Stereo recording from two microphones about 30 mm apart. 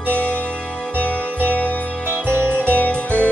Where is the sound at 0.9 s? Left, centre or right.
Left.